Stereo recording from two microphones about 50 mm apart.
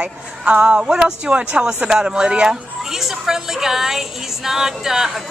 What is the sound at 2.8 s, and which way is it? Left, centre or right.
Speech, centre.